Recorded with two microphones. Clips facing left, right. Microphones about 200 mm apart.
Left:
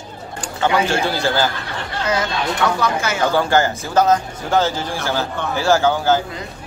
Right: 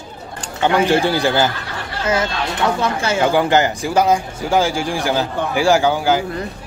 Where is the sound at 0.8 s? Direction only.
15° right (ahead or behind).